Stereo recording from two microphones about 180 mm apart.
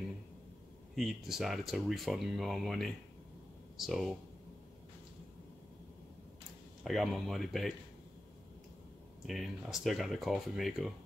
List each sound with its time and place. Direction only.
0.9 s speech: centre (ahead or behind)
6.8 s speech: centre (ahead or behind)
9.2 s speech: centre (ahead or behind)